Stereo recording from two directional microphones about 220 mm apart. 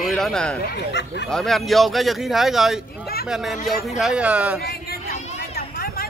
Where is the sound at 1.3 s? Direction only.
Centre (ahead or behind).